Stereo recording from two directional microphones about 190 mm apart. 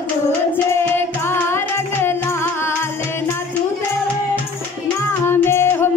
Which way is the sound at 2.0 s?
10° left (ahead or behind).